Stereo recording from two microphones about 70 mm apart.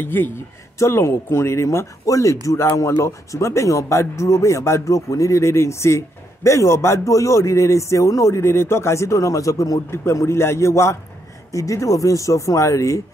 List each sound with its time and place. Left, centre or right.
0.0 s speech: left
0.7 s speech: left
10.1 s speech: left